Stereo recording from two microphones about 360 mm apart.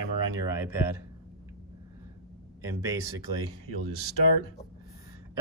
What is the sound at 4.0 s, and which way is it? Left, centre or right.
Speech, left.